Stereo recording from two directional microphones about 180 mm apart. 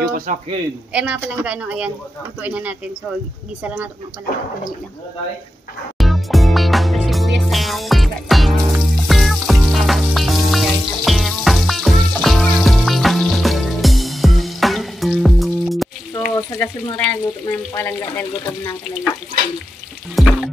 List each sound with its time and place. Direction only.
0.0 s a man's voice: 55° right (ahead or behind)
0.9 s a woman's voice: 5° right (ahead or behind)
5.9 s music: centre (ahead or behind)
16.3 s speech: 15° left (ahead or behind)
20.2 s music: centre (ahead or behind)